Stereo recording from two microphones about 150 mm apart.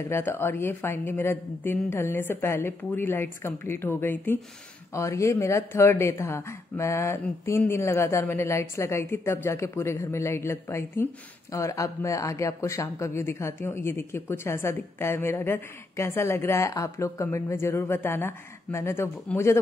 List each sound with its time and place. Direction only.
0.1 s speech: 15° left (ahead or behind)